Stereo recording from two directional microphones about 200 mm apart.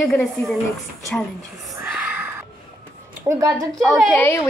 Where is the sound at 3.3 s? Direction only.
15° right (ahead or behind).